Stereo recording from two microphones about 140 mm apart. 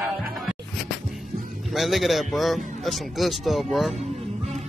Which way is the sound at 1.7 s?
Centre (ahead or behind).